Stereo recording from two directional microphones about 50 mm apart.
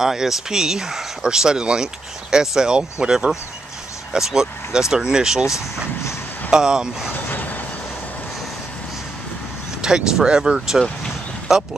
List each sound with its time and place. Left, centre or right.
0.0 s speech: centre
6.5 s speech: centre
7.2 s vehicle: left
9.8 s speech: centre